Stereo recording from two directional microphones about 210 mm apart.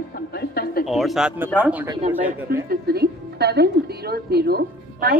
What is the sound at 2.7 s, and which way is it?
Speech, 50° right (ahead or behind).